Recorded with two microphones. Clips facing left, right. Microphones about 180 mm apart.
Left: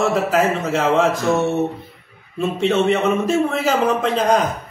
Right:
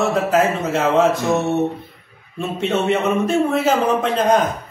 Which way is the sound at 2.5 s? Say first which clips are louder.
Left 1 dB; centre (ahead or behind).